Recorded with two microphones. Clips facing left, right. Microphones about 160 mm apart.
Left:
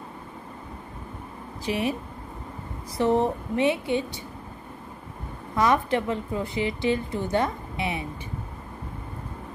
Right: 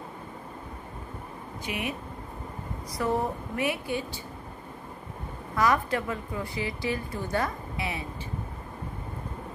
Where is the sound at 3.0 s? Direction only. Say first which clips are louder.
Left 6 dB; 25° left (ahead or behind).